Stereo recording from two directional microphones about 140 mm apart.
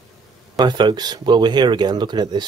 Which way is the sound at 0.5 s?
30° right (ahead or behind).